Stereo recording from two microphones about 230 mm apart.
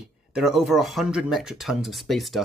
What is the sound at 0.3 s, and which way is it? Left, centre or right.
Speech, centre.